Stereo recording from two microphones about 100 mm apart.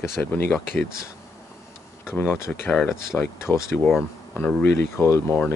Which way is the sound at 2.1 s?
20° left (ahead or behind).